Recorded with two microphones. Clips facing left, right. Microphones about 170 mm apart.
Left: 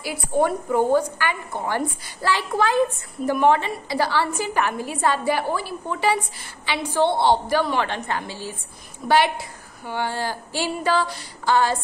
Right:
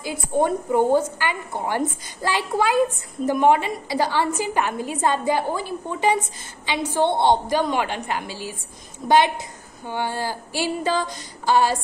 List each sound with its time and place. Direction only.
0.0 s a woman's voice: 25° right (ahead or behind)